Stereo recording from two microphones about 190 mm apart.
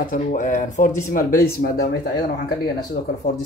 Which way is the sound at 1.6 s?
60° left (ahead or behind).